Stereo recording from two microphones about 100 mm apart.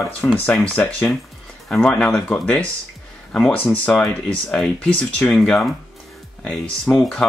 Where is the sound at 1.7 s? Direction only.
10° left (ahead or behind).